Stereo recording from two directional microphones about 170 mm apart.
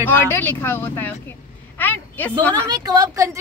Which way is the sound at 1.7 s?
10° left (ahead or behind).